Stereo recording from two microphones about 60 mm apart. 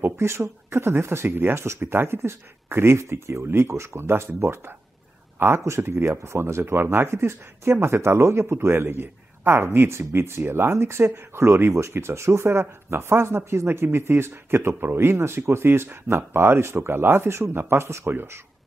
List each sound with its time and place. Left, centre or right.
0.0 s speech: right
5.8 s speech: right